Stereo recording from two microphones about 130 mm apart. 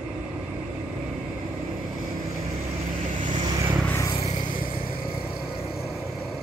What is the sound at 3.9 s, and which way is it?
Vehicle, 25° left (ahead or behind).